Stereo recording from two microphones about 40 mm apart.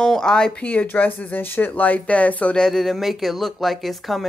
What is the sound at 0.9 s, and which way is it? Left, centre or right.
Speech, left.